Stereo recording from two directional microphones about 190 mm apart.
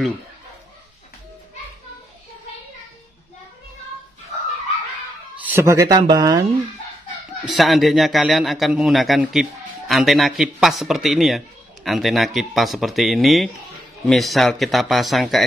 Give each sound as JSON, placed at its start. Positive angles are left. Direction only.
{"t": 5.5, "sound": "speech", "side_deg": -15}
{"t": 7.5, "sound": "a man's voice", "side_deg": 0}